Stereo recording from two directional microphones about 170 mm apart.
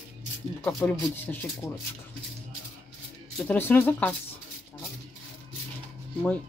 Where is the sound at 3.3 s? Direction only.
10° left (ahead or behind).